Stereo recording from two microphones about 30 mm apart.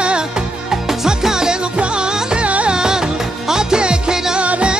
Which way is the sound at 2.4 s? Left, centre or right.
Right.